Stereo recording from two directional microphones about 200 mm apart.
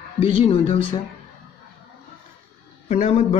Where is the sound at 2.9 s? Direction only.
35° left (ahead or behind).